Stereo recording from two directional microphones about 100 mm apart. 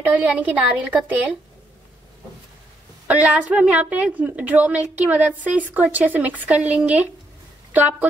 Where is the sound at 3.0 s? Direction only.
15° right (ahead or behind).